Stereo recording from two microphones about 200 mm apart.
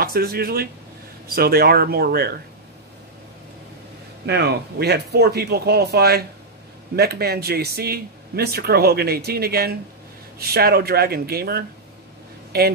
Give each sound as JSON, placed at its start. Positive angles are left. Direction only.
{"t": 0.0, "sound": "speech", "side_deg": -50}
{"t": 4.3, "sound": "speech", "side_deg": -55}